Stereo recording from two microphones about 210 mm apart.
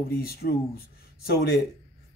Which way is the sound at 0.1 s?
45° left (ahead or behind).